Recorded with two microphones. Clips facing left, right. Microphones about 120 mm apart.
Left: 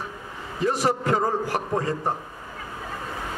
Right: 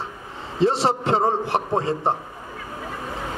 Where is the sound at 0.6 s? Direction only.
25° right (ahead or behind).